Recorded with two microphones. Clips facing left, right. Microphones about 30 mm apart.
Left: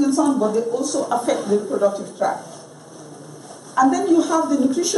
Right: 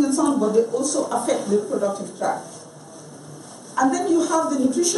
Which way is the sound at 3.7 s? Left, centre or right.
Centre.